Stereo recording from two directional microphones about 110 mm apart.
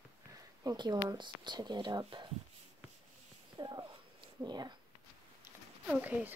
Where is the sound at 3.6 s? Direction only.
35° right (ahead or behind).